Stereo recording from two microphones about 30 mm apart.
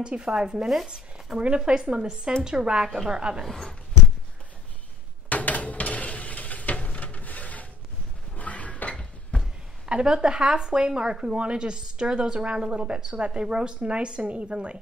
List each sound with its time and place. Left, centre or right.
0.0 s speech: right
1.9 s speech: right
5.3 s dishes: left
9.3 s a sound: left
10.0 s speech: right